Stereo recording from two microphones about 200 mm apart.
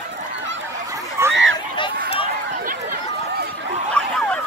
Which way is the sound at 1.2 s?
15° right (ahead or behind).